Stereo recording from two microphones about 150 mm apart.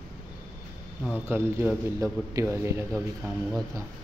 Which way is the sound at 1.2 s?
15° right (ahead or behind).